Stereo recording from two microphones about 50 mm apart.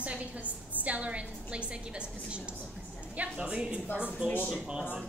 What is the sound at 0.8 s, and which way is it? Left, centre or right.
Speech, right.